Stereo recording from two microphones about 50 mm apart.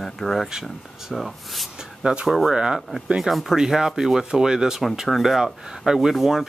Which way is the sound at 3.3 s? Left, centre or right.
Centre.